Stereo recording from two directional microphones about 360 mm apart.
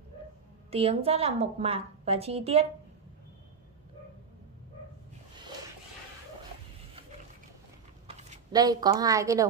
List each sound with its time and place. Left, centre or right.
0.7 s a woman's voice: centre
8.1 s speech: centre